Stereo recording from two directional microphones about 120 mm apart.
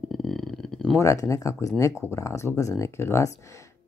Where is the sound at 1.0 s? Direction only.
25° left (ahead or behind).